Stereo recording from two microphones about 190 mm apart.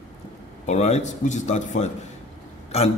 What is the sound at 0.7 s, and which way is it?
A man's voice, 35° left (ahead or behind).